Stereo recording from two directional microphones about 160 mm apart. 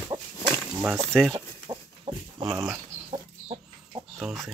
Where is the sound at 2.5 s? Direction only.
20° right (ahead or behind).